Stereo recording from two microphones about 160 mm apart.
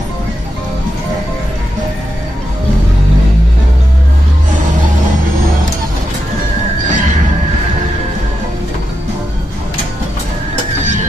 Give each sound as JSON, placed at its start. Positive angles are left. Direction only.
{"t": 6.9, "sound": "music", "side_deg": -50}